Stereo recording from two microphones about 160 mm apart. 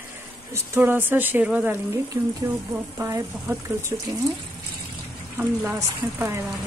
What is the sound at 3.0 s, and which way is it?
Speech, 20° right (ahead or behind).